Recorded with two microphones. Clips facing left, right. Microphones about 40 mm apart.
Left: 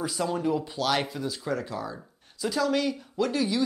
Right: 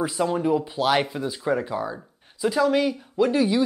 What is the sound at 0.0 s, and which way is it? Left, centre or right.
Speech, right.